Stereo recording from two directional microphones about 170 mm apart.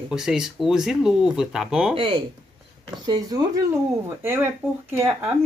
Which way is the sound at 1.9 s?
30° right (ahead or behind).